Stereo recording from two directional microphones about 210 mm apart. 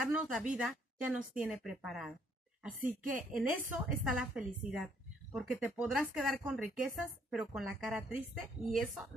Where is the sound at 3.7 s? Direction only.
5° right (ahead or behind).